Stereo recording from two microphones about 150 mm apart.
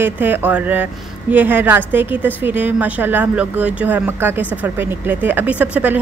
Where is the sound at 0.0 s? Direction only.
10° right (ahead or behind).